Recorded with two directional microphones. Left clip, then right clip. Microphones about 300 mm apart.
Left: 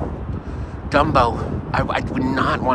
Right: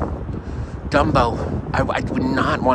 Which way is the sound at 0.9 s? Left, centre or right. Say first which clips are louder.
Left 1 dB; centre.